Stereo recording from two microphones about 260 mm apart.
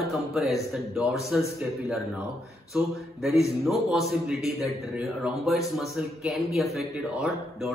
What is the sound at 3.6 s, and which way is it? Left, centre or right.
A man's voice, centre.